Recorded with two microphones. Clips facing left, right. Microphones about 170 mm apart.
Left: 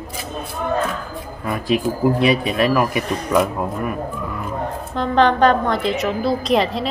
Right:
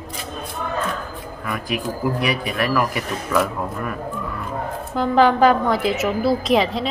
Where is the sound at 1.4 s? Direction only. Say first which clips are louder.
Left 6 dB; 25° left (ahead or behind).